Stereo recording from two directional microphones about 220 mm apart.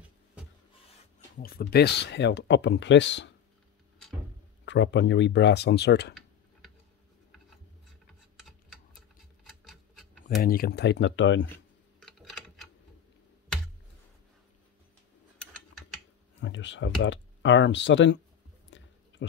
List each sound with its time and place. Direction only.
1.4 s speech: 45° left (ahead or behind)
4.6 s speech: 55° left (ahead or behind)
8.5 s tick-tock: centre (ahead or behind)
10.2 s speech: 40° left (ahead or behind)
12.0 s typing: centre (ahead or behind)
16.3 s speech: 55° left (ahead or behind)
18.7 s a sound: 55° left (ahead or behind)